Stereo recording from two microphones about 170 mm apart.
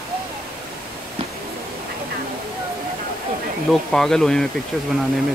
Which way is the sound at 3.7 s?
Centre (ahead or behind).